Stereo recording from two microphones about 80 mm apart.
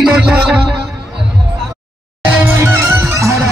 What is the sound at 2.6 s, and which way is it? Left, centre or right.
Music, right.